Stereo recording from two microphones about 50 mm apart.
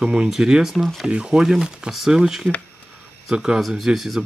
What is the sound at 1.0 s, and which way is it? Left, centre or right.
Speech, centre.